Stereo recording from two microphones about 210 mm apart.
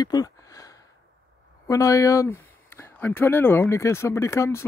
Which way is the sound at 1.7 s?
15° left (ahead or behind).